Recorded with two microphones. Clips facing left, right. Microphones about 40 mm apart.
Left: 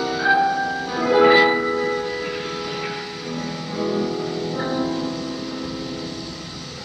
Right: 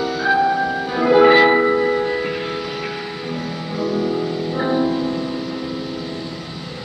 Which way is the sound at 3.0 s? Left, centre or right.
Centre.